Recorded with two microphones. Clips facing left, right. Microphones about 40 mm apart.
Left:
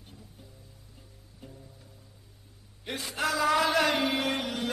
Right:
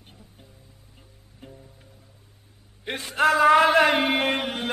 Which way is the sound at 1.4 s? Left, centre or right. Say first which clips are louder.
Right 4 dB; right.